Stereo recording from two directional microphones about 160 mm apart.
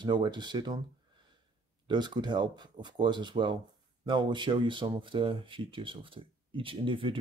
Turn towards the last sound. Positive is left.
turn(degrees=-30)  # may be behind; listen again after turning